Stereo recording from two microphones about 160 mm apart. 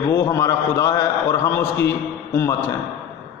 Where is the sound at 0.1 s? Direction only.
20° left (ahead or behind).